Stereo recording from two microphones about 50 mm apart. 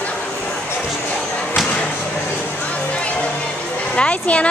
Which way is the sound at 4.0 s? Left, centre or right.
Left.